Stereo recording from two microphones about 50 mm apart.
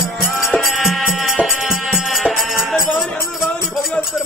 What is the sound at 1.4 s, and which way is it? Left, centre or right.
Music, centre.